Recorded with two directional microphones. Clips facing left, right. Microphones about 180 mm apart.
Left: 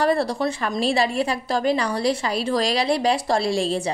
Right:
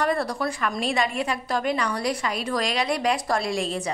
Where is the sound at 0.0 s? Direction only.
30° left (ahead or behind).